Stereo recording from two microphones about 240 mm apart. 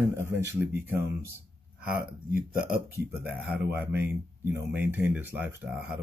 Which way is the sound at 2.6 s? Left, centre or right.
Centre.